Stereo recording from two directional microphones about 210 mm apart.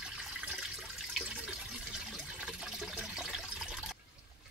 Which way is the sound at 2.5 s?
5° right (ahead or behind).